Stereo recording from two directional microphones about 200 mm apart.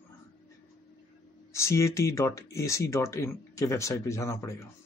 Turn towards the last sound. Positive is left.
turn(degrees=15)  # may be behind; listen again after turning